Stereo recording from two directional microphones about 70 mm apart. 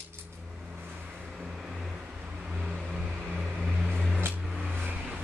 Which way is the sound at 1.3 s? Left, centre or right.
Centre.